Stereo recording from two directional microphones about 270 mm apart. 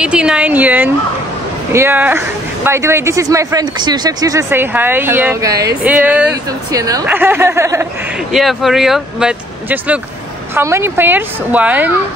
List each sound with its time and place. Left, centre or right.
0.0 s a woman's voice: centre